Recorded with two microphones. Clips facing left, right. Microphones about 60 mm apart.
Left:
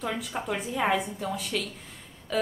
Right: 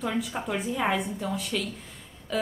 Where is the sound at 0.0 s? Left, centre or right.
Centre.